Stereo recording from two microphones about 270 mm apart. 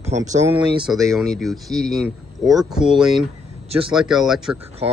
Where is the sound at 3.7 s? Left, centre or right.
Centre.